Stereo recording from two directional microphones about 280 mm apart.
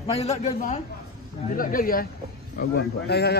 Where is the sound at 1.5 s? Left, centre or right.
Left.